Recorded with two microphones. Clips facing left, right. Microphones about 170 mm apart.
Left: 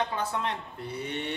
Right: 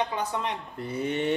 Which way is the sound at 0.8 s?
50° right (ahead or behind).